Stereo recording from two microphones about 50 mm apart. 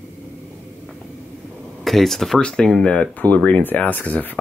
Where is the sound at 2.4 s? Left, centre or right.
Centre.